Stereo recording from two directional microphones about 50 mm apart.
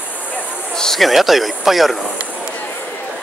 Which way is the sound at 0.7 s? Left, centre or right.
Centre.